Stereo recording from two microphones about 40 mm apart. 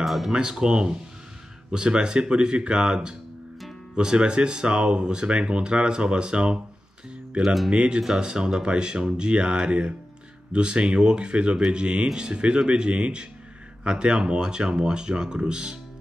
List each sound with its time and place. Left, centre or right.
0.0 s speech: centre
0.3 s speech: centre